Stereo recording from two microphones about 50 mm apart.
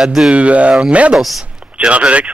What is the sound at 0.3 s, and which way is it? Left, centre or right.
Speech, right.